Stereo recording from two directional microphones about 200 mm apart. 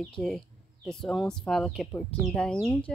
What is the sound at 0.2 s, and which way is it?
Speech, centre (ahead or behind).